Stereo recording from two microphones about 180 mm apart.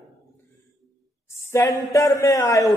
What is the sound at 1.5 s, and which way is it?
Speech, 15° left (ahead or behind).